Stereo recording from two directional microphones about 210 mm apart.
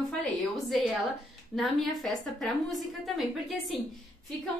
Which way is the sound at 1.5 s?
Centre (ahead or behind).